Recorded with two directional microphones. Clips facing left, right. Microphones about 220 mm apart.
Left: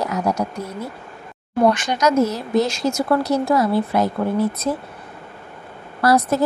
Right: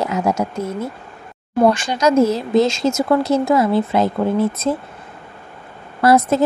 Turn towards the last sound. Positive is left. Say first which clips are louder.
# right 3 dB
turn(degrees=-25)  # may be behind; listen again after turning